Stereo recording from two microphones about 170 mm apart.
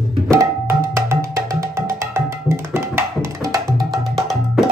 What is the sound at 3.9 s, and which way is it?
Music, centre (ahead or behind).